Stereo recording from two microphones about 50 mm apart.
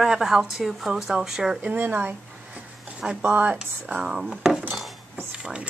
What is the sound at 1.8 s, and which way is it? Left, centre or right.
Speech, right.